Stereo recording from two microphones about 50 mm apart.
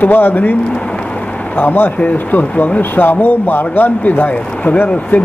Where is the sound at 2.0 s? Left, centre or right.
Left.